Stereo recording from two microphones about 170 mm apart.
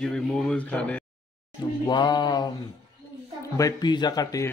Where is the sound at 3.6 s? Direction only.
25° left (ahead or behind).